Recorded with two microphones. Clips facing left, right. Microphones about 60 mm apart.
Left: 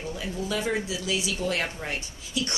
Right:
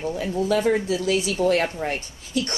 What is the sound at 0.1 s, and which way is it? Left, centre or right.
A woman's voice, right.